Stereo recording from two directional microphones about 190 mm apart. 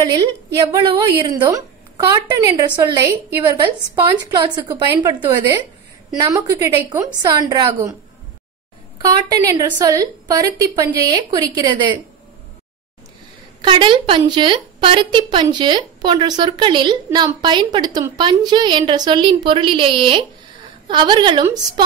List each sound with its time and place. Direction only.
0.0 s a woman's voice: 20° right (ahead or behind)
8.9 s a woman's voice: 20° right (ahead or behind)
13.6 s a woman's voice: 25° right (ahead or behind)